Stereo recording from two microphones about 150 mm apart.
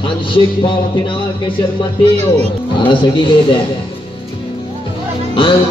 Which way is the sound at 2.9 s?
35° left (ahead or behind).